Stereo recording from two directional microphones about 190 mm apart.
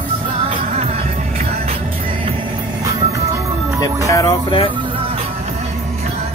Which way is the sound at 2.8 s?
15° right (ahead or behind).